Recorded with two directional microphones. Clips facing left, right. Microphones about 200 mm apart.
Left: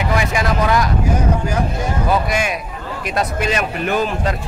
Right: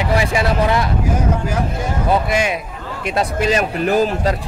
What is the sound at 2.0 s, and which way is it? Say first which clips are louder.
Speech: right 2 dB; 25° right (ahead or behind).